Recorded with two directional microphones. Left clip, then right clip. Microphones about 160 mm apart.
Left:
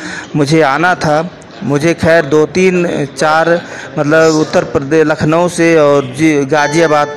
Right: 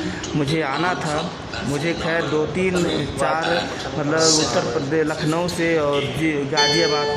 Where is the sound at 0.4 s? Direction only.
25° left (ahead or behind).